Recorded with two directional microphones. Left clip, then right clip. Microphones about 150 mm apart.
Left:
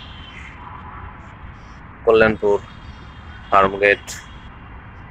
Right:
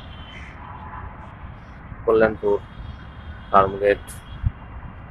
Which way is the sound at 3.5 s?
10° left (ahead or behind).